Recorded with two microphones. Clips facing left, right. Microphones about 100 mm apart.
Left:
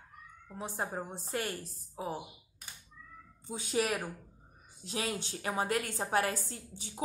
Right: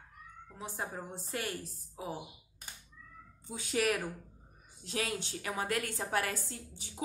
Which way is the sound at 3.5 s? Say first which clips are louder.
Even; 25° left (ahead or behind).